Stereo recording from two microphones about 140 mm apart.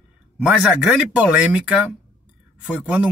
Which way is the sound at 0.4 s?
10° right (ahead or behind).